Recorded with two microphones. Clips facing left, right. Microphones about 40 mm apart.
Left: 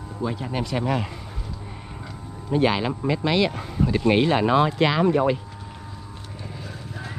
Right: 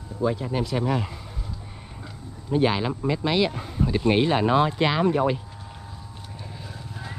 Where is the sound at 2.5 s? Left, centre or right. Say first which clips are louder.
Left 1 dB; left.